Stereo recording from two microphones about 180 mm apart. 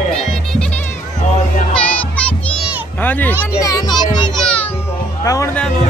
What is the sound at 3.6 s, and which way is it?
Speech, 20° left (ahead or behind).